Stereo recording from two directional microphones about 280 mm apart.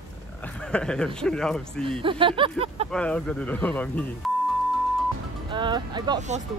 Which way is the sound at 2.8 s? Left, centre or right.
Centre.